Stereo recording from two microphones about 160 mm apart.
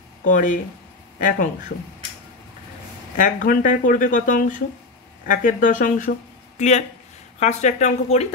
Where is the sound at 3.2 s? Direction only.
60° left (ahead or behind).